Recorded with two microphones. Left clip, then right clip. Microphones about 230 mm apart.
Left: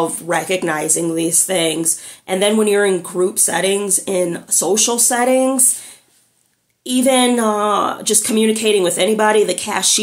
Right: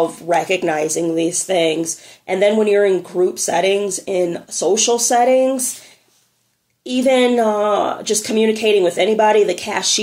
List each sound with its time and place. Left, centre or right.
0.1 s speech: centre
6.8 s speech: centre